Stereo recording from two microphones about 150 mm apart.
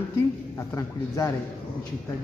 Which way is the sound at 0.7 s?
20° left (ahead or behind).